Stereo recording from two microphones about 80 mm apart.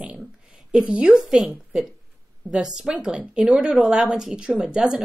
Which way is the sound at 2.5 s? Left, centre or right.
Centre.